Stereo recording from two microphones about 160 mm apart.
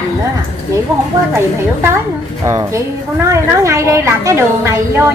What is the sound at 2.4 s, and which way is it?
A woman's voice, 20° right (ahead or behind).